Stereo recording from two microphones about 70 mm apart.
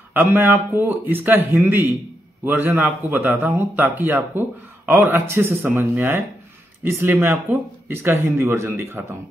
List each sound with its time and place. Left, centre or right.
0.1 s speech: right